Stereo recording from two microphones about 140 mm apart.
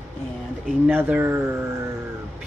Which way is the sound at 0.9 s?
15° right (ahead or behind).